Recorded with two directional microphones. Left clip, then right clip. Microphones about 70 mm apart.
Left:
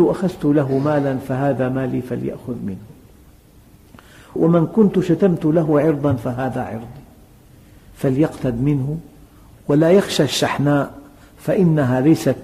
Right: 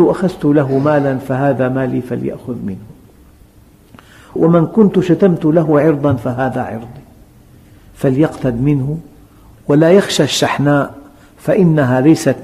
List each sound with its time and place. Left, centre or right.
0.0 s a man's voice: right
3.9 s a man's voice: right
8.0 s a man's voice: right